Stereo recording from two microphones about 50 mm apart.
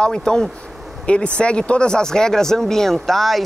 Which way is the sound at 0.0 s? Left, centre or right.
Centre.